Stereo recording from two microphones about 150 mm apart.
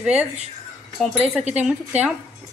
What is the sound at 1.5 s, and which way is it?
Speech, 10° right (ahead or behind).